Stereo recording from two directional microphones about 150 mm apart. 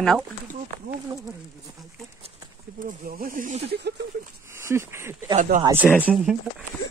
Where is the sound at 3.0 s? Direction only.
65° right (ahead or behind).